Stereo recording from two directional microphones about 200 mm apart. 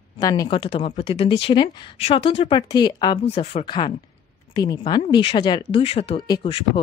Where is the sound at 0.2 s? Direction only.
20° left (ahead or behind).